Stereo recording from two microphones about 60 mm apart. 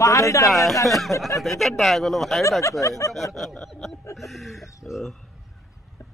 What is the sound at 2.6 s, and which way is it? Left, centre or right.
Speech, left.